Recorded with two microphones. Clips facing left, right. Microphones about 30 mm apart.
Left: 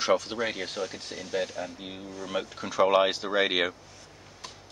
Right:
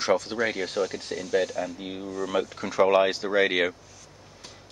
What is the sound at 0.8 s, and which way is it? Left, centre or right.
Speech, right.